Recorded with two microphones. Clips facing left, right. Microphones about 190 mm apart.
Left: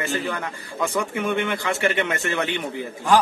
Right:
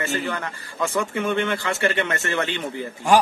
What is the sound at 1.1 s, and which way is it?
Speech, 15° left (ahead or behind).